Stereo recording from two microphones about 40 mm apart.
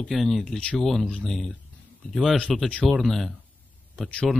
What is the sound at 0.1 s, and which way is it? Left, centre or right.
Speech, centre.